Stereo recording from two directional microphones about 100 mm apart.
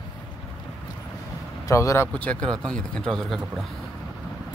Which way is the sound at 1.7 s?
30° left (ahead or behind).